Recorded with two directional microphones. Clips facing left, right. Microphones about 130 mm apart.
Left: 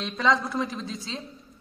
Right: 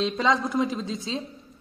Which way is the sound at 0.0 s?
20° right (ahead or behind).